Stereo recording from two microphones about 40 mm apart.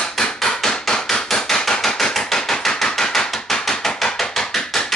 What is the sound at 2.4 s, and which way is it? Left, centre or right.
Chopping, centre.